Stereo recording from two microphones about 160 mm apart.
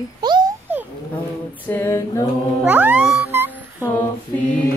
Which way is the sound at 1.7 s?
15° left (ahead or behind).